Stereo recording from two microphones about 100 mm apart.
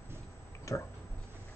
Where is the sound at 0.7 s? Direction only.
30° left (ahead or behind).